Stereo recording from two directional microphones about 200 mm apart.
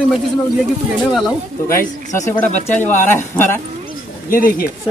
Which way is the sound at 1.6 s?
40° left (ahead or behind).